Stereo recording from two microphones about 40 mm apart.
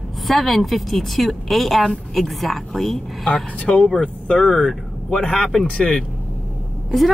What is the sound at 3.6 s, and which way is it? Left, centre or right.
Speech, left.